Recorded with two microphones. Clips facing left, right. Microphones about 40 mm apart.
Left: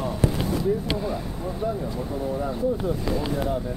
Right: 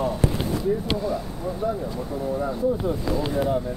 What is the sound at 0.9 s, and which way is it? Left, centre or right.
Speech, centre.